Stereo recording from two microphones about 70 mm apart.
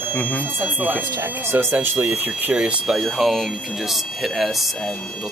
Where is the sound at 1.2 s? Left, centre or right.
Right; by 3.0 s centre.